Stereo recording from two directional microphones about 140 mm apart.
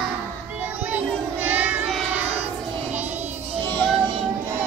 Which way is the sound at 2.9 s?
10° right (ahead or behind).